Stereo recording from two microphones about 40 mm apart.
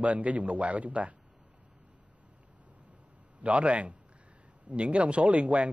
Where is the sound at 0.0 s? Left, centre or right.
Right.